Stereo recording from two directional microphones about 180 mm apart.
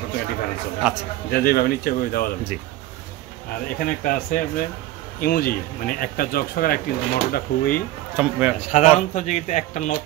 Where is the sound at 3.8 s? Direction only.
50° left (ahead or behind).